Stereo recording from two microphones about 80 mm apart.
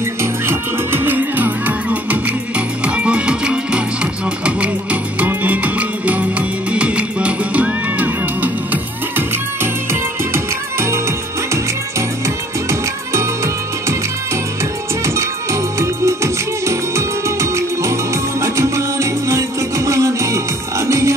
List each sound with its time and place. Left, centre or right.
0.2 s music: right
10.3 s music: right
12.6 s music: right
15.0 s music: right